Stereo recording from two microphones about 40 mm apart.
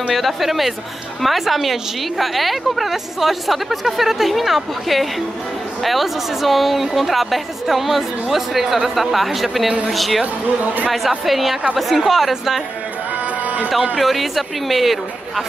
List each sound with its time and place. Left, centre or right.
0.1 s a woman's voice: centre
10.2 s speech: right
10.9 s a woman's voice: centre
13.2 s music: right
13.9 s a woman's voice: centre